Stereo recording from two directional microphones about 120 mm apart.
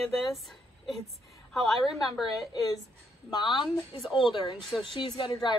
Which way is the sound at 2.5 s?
30° left (ahead or behind).